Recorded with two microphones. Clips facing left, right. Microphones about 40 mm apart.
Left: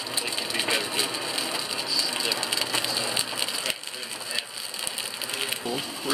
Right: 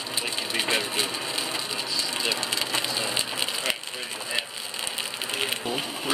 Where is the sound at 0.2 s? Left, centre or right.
Centre.